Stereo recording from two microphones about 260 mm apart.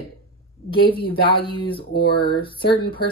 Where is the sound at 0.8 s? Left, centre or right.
Centre.